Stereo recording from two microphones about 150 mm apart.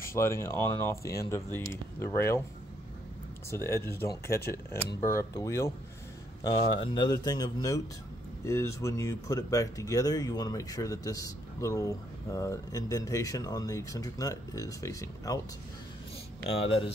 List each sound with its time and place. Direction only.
0.0 s speech: 20° left (ahead or behind)
3.6 s speech: 15° left (ahead or behind)
6.4 s speech: 30° left (ahead or behind)
16.5 s speech: 40° left (ahead or behind)